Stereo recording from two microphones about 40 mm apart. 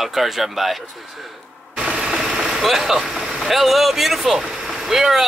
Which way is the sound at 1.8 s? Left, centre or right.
Centre.